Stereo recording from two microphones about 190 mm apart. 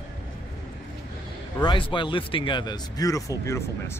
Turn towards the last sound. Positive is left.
turn(degrees=15)  # may be behind; listen again after turning